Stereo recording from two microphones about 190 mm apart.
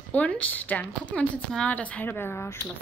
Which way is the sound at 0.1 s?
10° left (ahead or behind).